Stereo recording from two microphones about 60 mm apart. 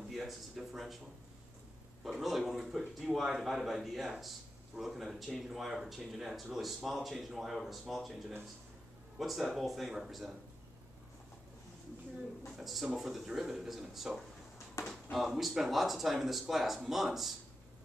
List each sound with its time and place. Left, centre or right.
0.1 s a man's voice: centre
2.0 s a man's voice: centre
9.2 s a man's voice: centre
12.5 s a man's voice: centre
14.8 s a sound: left
15.1 s a man's voice: centre